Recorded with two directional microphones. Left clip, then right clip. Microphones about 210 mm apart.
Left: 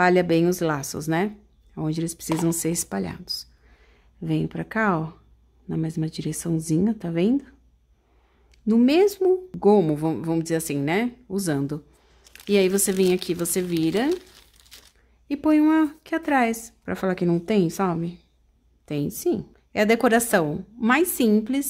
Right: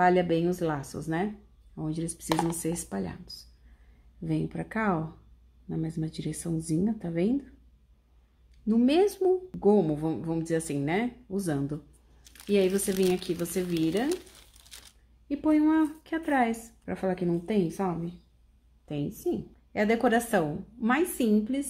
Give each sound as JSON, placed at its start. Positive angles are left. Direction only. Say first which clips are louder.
{"t": 0.0, "sound": "a woman's voice", "louder": "left 5 dB", "side_deg": 30}
{"t": 8.6, "sound": "a woman's voice", "louder": "left 5 dB", "side_deg": 25}
{"t": 15.2, "sound": "a woman's voice", "louder": "left 5 dB", "side_deg": 35}